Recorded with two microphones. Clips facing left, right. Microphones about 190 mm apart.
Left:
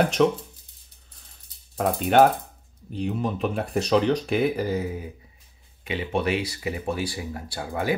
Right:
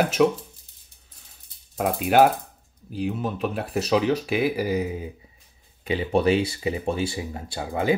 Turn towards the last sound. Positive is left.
turn(degrees=-20)  # may be behind; listen again after turning